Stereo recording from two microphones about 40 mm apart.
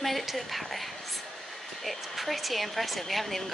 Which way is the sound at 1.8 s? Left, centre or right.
Centre.